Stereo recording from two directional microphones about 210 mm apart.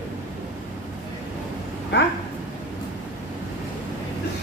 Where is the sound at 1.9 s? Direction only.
55° left (ahead or behind).